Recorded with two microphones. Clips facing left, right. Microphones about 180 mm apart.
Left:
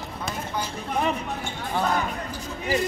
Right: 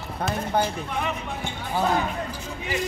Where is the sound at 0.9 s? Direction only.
40° left (ahead or behind).